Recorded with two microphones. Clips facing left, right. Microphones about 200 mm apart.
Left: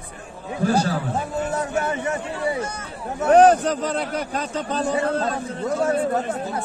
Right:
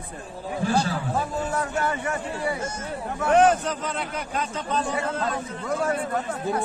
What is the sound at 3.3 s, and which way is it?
A man's voice, 35° left (ahead or behind).